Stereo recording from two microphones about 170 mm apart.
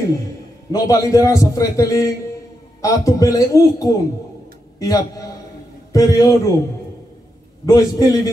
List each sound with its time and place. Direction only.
0.7 s a man's voice: 20° left (ahead or behind)
7.6 s a man's voice: 20° left (ahead or behind)